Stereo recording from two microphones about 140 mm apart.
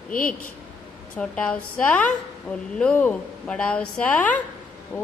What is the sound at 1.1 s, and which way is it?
A woman's voice, 5° left (ahead or behind).